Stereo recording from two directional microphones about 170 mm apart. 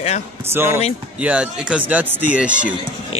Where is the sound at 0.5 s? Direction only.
15° right (ahead or behind).